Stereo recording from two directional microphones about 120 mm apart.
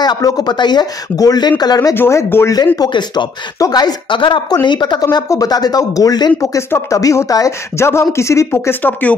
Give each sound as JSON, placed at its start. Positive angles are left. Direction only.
{"t": 0.0, "sound": "speech", "side_deg": 35}
{"t": 2.0, "sound": "speech", "side_deg": 20}
{"t": 2.5, "sound": "speech", "side_deg": 30}